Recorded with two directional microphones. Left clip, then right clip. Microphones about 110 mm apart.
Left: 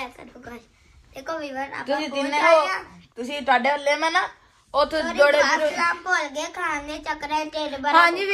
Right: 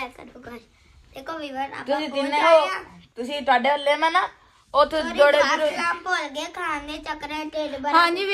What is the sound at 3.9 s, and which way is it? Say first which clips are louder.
A woman's voice: right 1 dB; 90° right.